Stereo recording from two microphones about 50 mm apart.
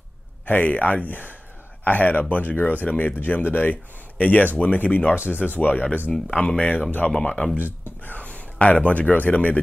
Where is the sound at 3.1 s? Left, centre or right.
Left.